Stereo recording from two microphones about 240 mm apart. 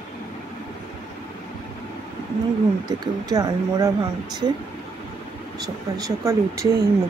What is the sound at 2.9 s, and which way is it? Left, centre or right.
Speech, centre.